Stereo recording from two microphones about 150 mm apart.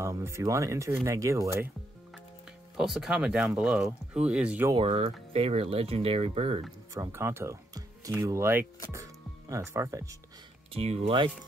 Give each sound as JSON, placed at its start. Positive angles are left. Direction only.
{"t": 0.0, "sound": "speech", "side_deg": -20}
{"t": 2.8, "sound": "speech", "side_deg": -5}
{"t": 4.7, "sound": "speech", "side_deg": -40}
{"t": 6.9, "sound": "speech", "side_deg": -20}
{"t": 10.7, "sound": "speech", "side_deg": -45}